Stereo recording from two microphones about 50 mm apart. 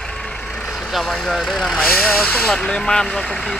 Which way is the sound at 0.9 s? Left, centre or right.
Centre.